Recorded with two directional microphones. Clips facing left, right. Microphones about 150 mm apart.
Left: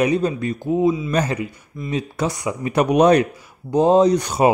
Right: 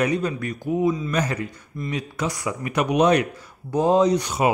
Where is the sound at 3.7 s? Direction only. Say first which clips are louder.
Left 4 dB; 25° left (ahead or behind).